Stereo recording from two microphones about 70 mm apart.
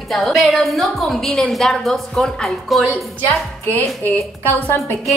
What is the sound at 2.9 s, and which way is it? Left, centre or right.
A woman's voice, left.